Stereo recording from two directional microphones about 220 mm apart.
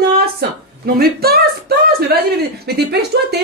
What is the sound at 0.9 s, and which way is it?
Speech, 45° right (ahead or behind).